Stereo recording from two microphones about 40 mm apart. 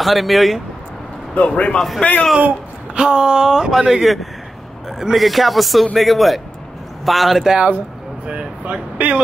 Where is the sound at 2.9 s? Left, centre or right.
Right.